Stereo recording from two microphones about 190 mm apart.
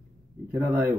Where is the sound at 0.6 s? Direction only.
15° right (ahead or behind).